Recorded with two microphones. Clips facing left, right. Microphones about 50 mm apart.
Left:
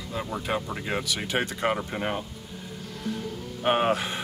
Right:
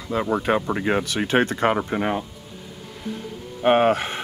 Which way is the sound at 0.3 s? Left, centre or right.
Right.